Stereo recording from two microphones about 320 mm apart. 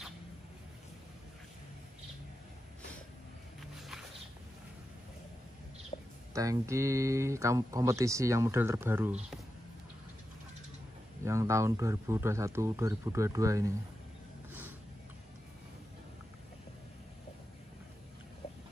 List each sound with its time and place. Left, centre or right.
5.9 s a sound: centre
6.3 s speech: centre
11.2 s speech: centre